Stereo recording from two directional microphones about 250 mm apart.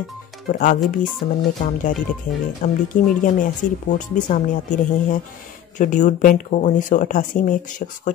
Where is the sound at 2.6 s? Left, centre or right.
Left.